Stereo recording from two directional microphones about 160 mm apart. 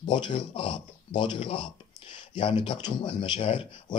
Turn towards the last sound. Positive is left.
turn(degrees=35)  # may be behind; listen again after turning